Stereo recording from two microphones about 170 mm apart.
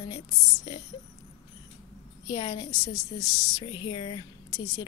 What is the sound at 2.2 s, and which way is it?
A woman's voice, 25° left (ahead or behind).